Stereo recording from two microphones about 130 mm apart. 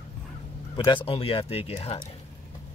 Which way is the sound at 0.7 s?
40° left (ahead or behind).